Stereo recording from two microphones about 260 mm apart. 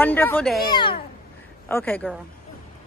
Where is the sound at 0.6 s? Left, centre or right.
Centre.